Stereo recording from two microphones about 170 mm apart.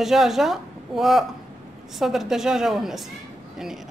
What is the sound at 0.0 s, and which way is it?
Speech, centre (ahead or behind).